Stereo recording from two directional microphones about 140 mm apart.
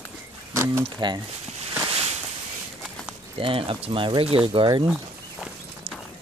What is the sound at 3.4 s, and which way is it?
Speech, 40° right (ahead or behind).